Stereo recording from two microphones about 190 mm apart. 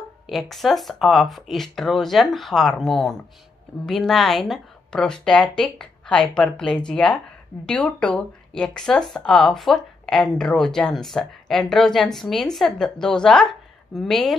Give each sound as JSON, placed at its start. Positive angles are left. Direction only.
{"t": 0.3, "sound": "speech", "side_deg": 0}